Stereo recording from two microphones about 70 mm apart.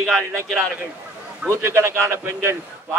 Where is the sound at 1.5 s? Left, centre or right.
Right.